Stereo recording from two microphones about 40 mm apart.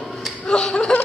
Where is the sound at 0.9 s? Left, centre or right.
Left.